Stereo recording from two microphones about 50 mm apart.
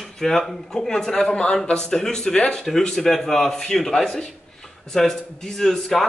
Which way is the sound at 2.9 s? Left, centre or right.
Centre.